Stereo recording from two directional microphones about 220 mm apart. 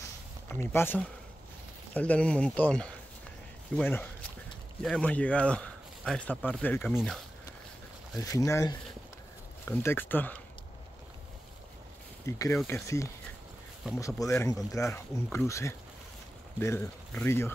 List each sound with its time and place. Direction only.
0.5 s speech: 10° left (ahead or behind)
8.2 s speech: 15° left (ahead or behind)
12.3 s speech: 15° left (ahead or behind)